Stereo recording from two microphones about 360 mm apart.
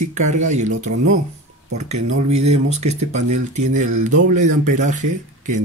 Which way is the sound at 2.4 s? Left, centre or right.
Centre.